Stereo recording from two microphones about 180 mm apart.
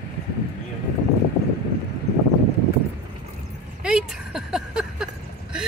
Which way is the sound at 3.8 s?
5° right (ahead or behind).